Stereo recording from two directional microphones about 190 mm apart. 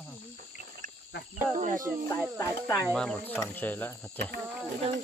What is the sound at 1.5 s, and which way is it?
Speech, 40° right (ahead or behind).